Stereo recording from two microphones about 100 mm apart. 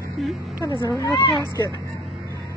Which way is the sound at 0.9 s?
35° left (ahead or behind).